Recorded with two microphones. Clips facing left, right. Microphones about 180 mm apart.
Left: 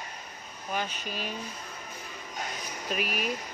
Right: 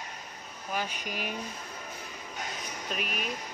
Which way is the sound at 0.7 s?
10° right (ahead or behind).